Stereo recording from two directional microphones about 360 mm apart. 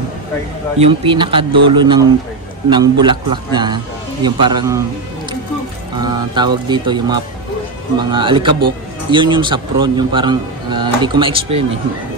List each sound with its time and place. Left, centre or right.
0.7 s a man's voice: centre
5.9 s a man's voice: centre